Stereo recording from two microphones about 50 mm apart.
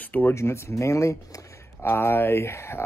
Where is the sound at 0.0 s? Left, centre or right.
Left.